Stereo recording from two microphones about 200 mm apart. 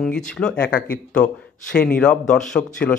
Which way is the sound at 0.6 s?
45° left (ahead or behind).